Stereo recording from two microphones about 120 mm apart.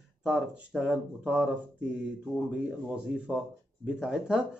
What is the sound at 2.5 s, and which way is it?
Speech, 10° right (ahead or behind).